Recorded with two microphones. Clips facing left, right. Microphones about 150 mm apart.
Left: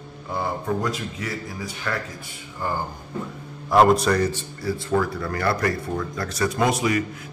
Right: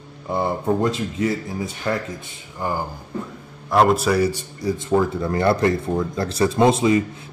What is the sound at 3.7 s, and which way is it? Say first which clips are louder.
A man's voice: even; centre (ahead or behind).